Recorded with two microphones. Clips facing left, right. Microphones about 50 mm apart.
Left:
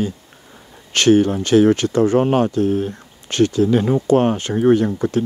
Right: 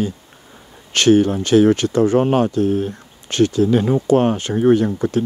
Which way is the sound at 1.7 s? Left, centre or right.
Centre.